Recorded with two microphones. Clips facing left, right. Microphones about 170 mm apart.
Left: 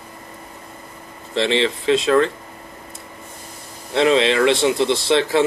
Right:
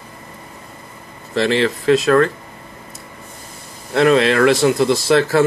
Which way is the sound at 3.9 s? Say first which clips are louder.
Right 3 dB; 55° right (ahead or behind).